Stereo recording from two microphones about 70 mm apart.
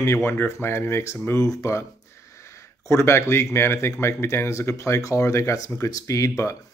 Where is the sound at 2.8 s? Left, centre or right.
Left.